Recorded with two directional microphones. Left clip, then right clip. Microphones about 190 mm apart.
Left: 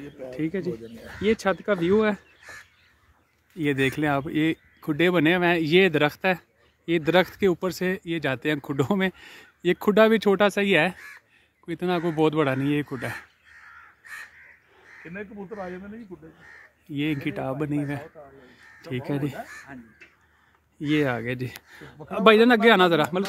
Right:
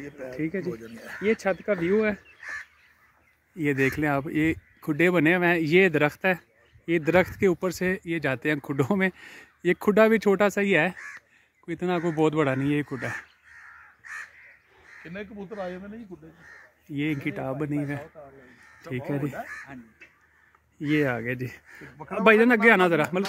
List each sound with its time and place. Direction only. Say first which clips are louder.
0.0 s speech: left 1 dB; 15° left (ahead or behind)
0.5 s speech: left 3 dB; centre (ahead or behind)
1.2 s speech: left 2 dB; 10° left (ahead or behind)
3.5 s speech: even; 5° left (ahead or behind)
15.0 s speech: left 1 dB; 25° right (ahead or behind)
16.8 s speech: left 1 dB; 5° left (ahead or behind)
18.2 s a man's voice: even; 30° right (ahead or behind)
18.9 s speech: left 1 dB; 5° left (ahead or behind)
20.9 s speech: left 1 dB; 5° left (ahead or behind)